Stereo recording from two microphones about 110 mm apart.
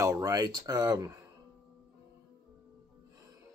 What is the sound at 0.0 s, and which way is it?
Speech, 30° right (ahead or behind).